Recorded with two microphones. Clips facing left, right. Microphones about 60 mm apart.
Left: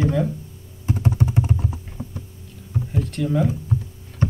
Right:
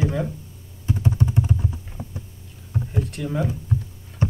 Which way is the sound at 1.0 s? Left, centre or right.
Centre.